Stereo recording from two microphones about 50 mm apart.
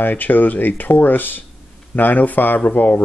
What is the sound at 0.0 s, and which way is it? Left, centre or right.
Speech, left.